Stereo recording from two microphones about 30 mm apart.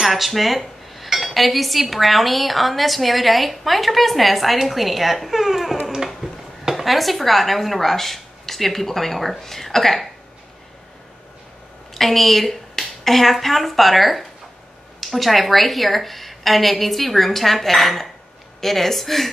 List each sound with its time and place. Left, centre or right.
0.0 s speech: centre
6.2 s a sound: right
6.7 s speech: centre
11.9 s a woman's voice: centre